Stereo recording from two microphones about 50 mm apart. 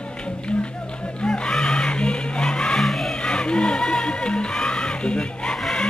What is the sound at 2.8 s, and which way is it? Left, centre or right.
Music, centre.